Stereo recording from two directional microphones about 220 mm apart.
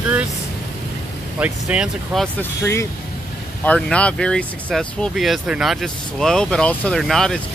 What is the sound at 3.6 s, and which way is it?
Speech, 5° left (ahead or behind).